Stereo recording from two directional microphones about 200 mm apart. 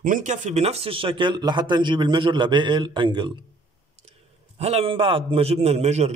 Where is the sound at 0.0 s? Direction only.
40° right (ahead or behind); by 3.3 s 25° right (ahead or behind).